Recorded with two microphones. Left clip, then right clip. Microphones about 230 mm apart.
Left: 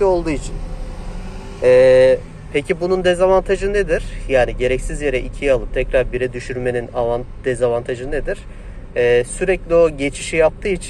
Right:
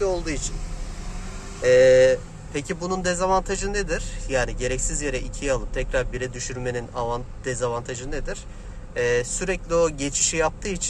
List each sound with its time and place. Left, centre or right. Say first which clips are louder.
0.0 s speech: left 9 dB; centre
1.6 s speech: left 5 dB; centre